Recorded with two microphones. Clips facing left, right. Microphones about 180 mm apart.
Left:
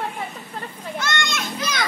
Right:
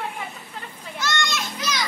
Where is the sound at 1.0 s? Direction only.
55° left (ahead or behind).